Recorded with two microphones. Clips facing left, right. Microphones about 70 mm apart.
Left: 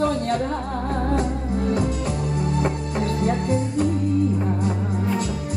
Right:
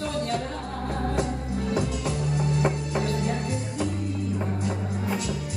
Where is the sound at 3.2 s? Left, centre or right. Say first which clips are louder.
Left 7 dB; left.